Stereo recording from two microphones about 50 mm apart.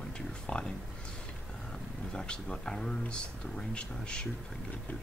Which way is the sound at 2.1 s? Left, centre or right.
Centre.